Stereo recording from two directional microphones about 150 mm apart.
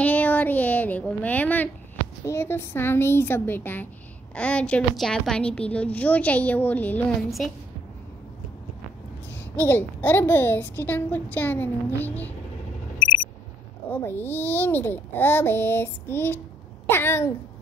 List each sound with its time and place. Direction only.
0.0 s a sound: 10° left (ahead or behind)
2.2 s a child's voice: 15° left (ahead or behind)
7.2 s a woman's voice: centre (ahead or behind)
9.6 s a child's voice: 15° left (ahead or behind)
13.8 s a child's voice: 15° left (ahead or behind)